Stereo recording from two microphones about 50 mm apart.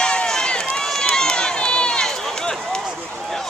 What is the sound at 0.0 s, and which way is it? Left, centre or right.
Run, centre.